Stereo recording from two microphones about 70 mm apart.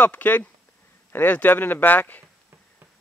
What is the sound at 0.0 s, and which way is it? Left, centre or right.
Speech, left.